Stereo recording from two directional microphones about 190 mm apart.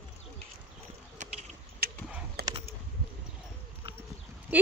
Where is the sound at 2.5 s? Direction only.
20° right (ahead or behind).